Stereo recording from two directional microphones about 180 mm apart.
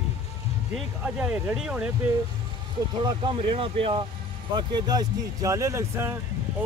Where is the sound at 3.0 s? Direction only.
25° right (ahead or behind).